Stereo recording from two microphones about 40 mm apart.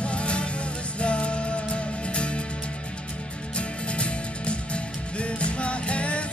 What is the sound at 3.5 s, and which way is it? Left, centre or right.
Music, left.